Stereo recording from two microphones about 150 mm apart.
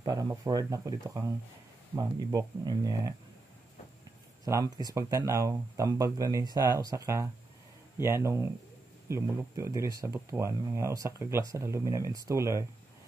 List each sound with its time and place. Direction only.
0.0 s speech: 25° right (ahead or behind)
4.5 s speech: 25° right (ahead or behind)